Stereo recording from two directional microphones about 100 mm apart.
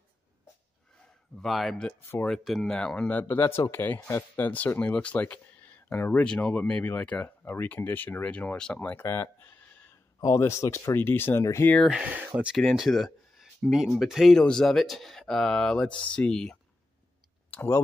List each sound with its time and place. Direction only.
1.4 s speech: centre (ahead or behind); by 9.0 s 15° left (ahead or behind)
9.0 s a sound: 25° left (ahead or behind)
10.2 s speech: 30° left (ahead or behind)
11.9 s speech: 15° right (ahead or behind)
12.5 s speech: centre (ahead or behind)
17.5 s a sound: 20° left (ahead or behind)